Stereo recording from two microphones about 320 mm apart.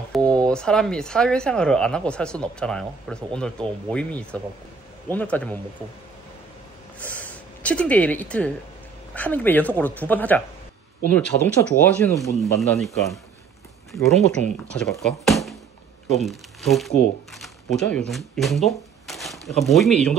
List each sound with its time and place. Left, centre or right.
0.3 s speech: centre
7.0 s speech: centre